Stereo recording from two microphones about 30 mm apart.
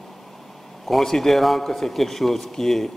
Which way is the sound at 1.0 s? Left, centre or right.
Centre.